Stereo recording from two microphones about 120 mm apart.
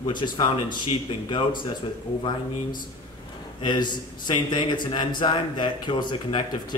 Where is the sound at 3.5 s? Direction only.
40° left (ahead or behind).